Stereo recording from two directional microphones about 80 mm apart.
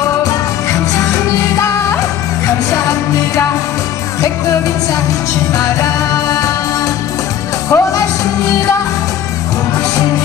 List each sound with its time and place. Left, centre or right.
0.0 s music: left
2.4 s music: left
5.5 s music: left
7.7 s music: left